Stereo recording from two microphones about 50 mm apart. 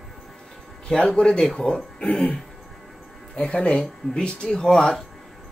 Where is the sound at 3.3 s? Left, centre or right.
Left.